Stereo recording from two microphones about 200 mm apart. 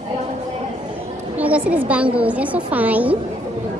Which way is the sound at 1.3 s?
5° right (ahead or behind).